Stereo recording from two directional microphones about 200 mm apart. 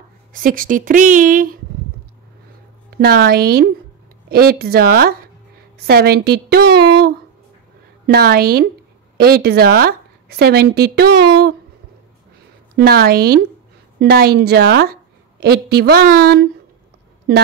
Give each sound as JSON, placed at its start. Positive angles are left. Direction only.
{"t": 0.3, "sound": "speech", "side_deg": -45}
{"t": 3.0, "sound": "a woman's voice", "side_deg": -50}
{"t": 12.7, "sound": "speech", "side_deg": -50}